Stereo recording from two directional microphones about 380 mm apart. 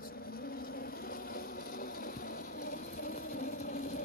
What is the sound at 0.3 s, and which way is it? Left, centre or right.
Vehicle, left.